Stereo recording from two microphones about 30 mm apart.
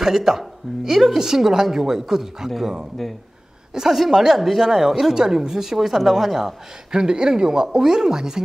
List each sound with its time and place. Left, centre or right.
0.0 s a woman's voice: centre
3.0 s speech: centre
3.7 s speech: centre
4.1 s a woman's voice: centre
6.9 s speech: right